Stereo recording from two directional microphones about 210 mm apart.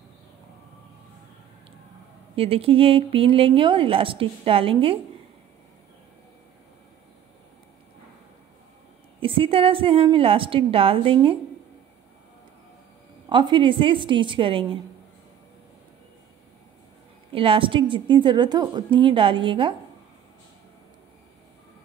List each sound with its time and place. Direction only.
2.3 s speech: 25° right (ahead or behind)
9.2 s speech: 25° right (ahead or behind)
13.3 s speech: 20° right (ahead or behind)
17.3 s speech: 25° right (ahead or behind)